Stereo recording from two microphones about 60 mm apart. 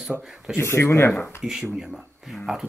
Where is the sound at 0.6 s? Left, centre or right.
Left.